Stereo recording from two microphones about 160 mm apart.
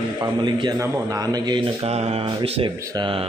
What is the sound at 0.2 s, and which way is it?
A man's voice, 30° right (ahead or behind).